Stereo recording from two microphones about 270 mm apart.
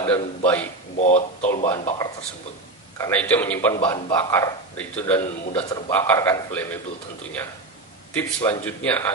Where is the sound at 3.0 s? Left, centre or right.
Centre.